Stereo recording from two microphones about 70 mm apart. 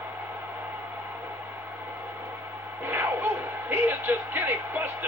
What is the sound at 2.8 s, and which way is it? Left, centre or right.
Speech, right.